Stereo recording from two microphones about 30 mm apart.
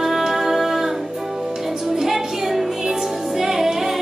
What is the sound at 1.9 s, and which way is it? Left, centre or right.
Music, centre.